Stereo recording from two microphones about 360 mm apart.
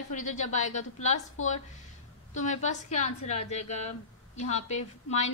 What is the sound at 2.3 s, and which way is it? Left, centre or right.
A woman's voice, centre.